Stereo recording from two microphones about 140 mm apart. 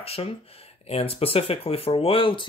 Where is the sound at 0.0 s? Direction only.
45° left (ahead or behind).